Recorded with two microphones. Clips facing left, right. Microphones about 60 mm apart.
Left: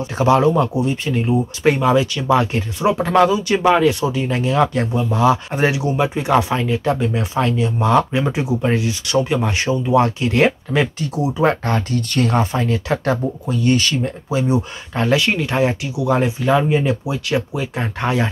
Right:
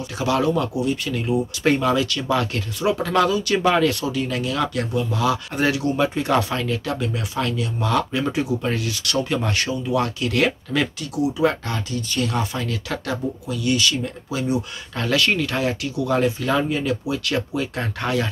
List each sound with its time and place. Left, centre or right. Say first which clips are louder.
0.2 s speech: left 6 dB; left
1.6 s speech: left 4 dB; centre; by 14.1 s left
14.3 s speech: left 5 dB; left